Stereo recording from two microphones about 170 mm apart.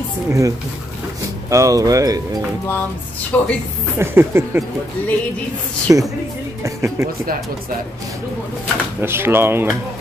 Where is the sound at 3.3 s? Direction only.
10° left (ahead or behind).